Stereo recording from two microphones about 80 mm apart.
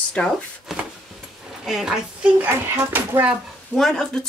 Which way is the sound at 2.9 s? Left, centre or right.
Right.